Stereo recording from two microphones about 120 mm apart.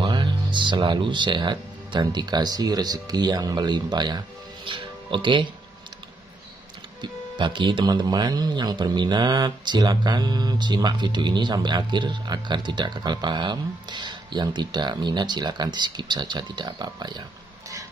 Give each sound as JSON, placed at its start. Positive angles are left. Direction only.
{"t": 0.0, "sound": "speech", "side_deg": -40}
{"t": 7.0, "sound": "speech", "side_deg": -40}